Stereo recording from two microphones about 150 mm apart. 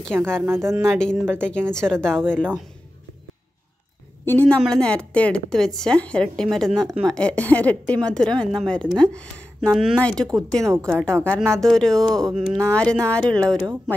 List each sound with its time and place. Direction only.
0.5 s speech: 15° right (ahead or behind)
0.8 s a woman's voice: 5° left (ahead or behind)
4.2 s a woman's voice: 15° left (ahead or behind)
10.7 s speech: 20° right (ahead or behind)
11.2 s a woman's voice: 5° left (ahead or behind)